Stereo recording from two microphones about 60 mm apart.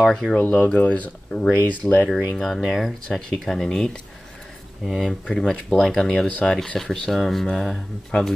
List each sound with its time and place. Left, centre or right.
0.0 s speech: centre
0.4 s speech: left
2.3 s speech: centre
6.2 s speech: centre